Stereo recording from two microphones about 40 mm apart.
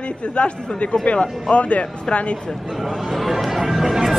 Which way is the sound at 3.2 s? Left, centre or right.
Centre.